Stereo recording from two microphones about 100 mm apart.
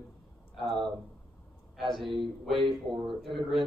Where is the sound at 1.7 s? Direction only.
Centre (ahead or behind).